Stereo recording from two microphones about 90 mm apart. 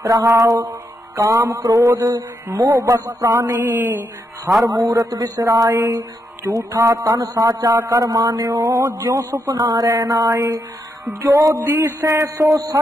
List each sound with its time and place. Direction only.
0.0 s mantra: 40° right (ahead or behind)
4.5 s a sound: 20° right (ahead or behind)
4.9 s mantra: 40° right (ahead or behind)
8.5 s a sound: 25° right (ahead or behind)
8.7 s mantra: 40° right (ahead or behind)
9.5 s speech: 40° right (ahead or behind)
10.0 s mantra: 35° right (ahead or behind)
11.6 s mantra: 25° right (ahead or behind); by 12.8 s 40° right (ahead or behind)